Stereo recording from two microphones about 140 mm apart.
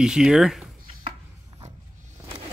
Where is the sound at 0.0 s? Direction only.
5° right (ahead or behind).